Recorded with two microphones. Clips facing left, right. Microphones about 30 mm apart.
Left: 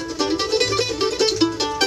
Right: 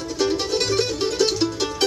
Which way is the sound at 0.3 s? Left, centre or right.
Left.